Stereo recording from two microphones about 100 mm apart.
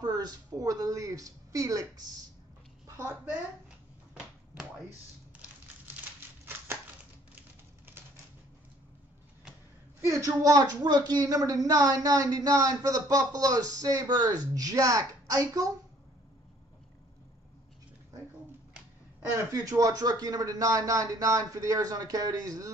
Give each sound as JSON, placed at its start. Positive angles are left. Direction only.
{"t": 0.0, "sound": "a woman's voice", "side_deg": -40}
{"t": 3.0, "sound": "a woman's voice", "side_deg": -25}
{"t": 5.4, "sound": "crumpling", "side_deg": -20}
{"t": 10.0, "sound": "speech", "side_deg": -35}
{"t": 19.5, "sound": "speech", "side_deg": -35}